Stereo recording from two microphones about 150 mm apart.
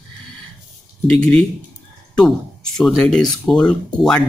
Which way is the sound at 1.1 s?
5° left (ahead or behind).